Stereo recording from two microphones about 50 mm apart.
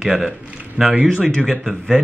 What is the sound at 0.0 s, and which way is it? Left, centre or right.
Speech, centre.